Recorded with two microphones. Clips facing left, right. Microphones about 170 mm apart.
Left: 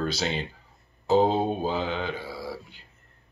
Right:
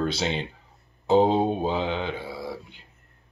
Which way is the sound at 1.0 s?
25° right (ahead or behind).